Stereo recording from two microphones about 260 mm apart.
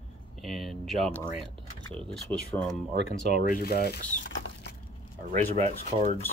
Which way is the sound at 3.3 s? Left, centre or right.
Left.